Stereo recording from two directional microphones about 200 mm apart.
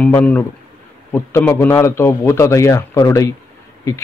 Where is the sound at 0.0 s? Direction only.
10° left (ahead or behind).